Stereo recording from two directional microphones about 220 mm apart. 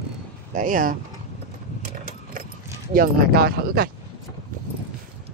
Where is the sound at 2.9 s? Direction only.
45° right (ahead or behind).